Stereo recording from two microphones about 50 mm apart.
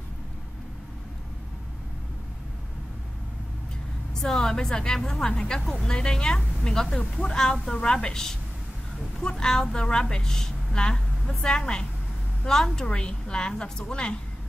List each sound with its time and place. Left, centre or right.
4.1 s a woman's voice: centre